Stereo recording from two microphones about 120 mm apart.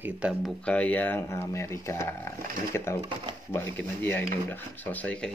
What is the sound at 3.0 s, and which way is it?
Speech, 45° right (ahead or behind).